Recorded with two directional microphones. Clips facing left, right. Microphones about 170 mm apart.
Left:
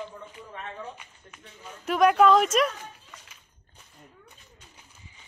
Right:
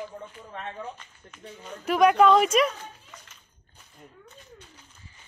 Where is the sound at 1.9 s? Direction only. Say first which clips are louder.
Right 1 dB; centre (ahead or behind).